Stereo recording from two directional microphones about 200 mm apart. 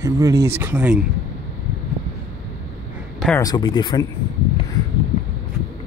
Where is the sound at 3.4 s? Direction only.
20° left (ahead or behind).